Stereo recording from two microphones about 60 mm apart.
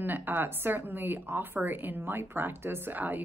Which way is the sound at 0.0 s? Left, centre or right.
Right.